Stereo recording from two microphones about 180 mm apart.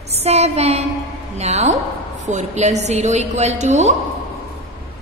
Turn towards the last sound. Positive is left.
turn(degrees=-40)  # may be behind; listen again after turning